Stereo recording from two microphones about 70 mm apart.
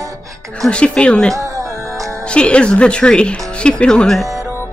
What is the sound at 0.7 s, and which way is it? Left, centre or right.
Speech, centre.